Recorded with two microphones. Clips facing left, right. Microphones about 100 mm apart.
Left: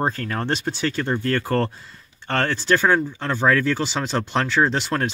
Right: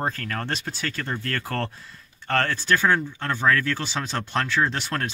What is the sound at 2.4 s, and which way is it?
Speech, 15° left (ahead or behind).